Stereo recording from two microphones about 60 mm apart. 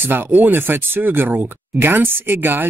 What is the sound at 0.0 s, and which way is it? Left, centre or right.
Speech, right.